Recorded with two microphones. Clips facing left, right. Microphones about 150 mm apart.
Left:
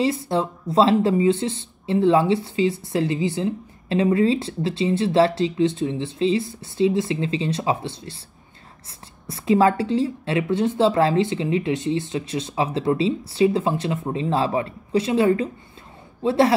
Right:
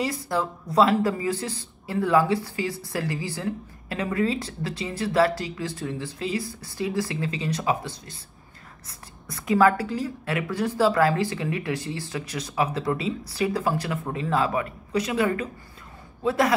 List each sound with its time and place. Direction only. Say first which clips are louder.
0.0 s speech: left 5 dB; 25° left (ahead or behind)
9.3 s speech: left 2 dB; 25° left (ahead or behind)